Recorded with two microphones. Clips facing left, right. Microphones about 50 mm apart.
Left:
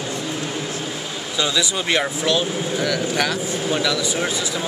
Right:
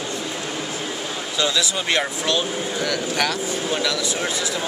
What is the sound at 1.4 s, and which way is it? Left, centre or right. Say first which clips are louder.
Speech: left 1 dB; centre.